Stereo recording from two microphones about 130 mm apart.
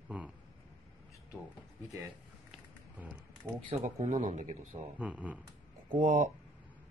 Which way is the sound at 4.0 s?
65° right (ahead or behind).